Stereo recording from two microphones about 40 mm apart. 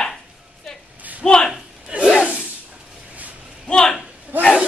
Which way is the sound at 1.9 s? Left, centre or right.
Right.